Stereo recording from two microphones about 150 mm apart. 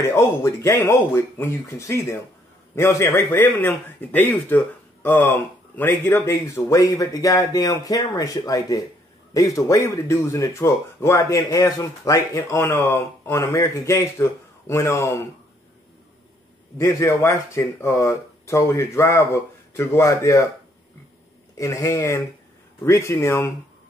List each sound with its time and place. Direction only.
0.0 s a man's voice: 20° left (ahead or behind)
16.7 s speech: 20° left (ahead or behind)
21.5 s speech: 20° left (ahead or behind)